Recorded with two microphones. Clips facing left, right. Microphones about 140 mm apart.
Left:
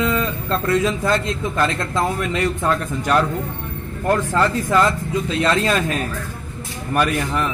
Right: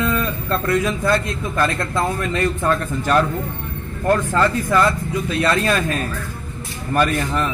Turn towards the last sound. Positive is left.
turn(degrees=10)  # may be behind; listen again after turning